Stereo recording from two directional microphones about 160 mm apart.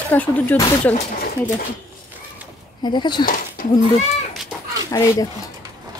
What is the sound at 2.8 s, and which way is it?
Speech, 30° left (ahead or behind).